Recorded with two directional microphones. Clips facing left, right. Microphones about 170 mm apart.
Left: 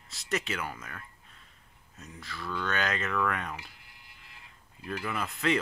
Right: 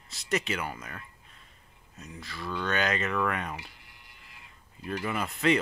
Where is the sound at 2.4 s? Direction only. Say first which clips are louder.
Right 1 dB; 20° right (ahead or behind).